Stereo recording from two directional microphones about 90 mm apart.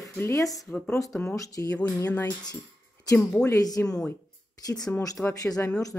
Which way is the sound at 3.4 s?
40° left (ahead or behind).